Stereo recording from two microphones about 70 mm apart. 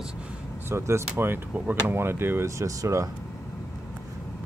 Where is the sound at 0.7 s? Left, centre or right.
Right.